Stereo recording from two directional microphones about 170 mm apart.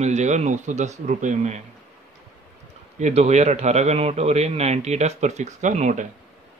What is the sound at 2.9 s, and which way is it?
Speech, 40° right (ahead or behind).